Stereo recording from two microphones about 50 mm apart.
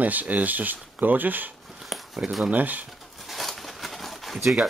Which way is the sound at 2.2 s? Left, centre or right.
Right.